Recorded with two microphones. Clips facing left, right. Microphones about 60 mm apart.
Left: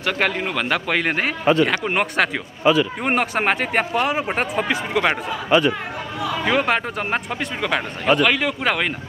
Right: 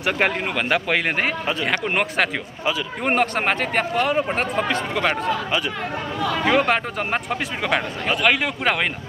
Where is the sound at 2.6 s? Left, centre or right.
Left.